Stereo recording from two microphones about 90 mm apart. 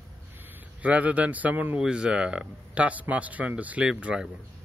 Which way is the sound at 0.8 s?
15° right (ahead or behind).